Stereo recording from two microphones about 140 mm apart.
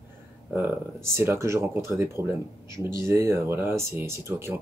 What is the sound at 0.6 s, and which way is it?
Speech, 15° right (ahead or behind).